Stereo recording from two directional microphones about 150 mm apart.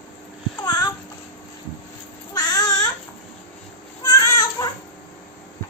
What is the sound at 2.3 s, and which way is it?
Babbling, 25° left (ahead or behind).